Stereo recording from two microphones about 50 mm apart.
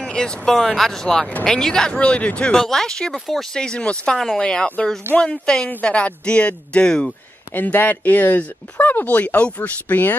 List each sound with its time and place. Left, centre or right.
0.0 s speech: centre
2.5 s speech: centre
7.5 s speech: left